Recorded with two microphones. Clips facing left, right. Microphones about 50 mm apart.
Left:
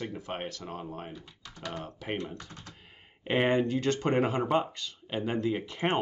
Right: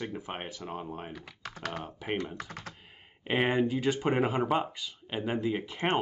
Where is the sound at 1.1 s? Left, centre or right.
Right.